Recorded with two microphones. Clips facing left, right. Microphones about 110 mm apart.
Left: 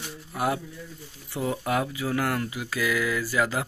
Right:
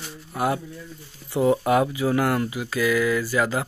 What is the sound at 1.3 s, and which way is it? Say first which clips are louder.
Speech: right 8 dB; 30° right (ahead or behind).